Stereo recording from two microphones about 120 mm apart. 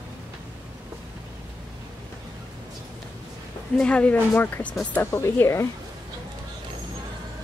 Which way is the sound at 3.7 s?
10° left (ahead or behind).